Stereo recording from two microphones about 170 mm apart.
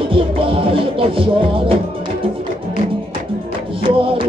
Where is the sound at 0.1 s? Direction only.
30° right (ahead or behind).